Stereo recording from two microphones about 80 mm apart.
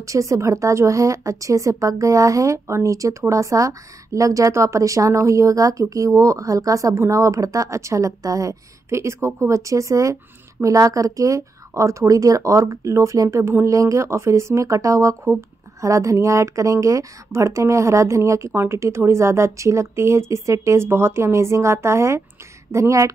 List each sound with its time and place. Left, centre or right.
0.0 s a woman's voice: right